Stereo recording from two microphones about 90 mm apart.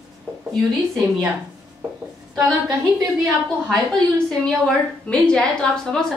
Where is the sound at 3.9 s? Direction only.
10° left (ahead or behind).